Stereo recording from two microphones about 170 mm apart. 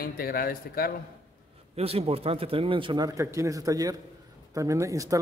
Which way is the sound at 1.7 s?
35° right (ahead or behind).